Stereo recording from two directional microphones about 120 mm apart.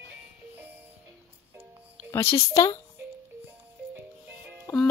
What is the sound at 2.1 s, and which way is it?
Speech, 20° left (ahead or behind).